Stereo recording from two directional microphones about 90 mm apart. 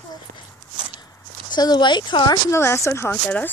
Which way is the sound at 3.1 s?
20° left (ahead or behind).